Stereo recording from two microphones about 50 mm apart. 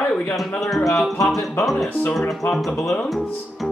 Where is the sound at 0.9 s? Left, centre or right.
Centre.